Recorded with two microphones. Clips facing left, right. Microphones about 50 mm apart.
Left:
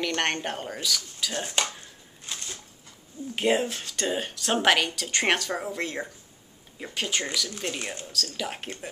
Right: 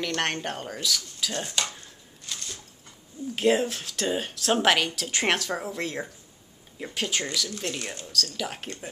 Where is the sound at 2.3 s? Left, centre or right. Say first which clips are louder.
Even; left.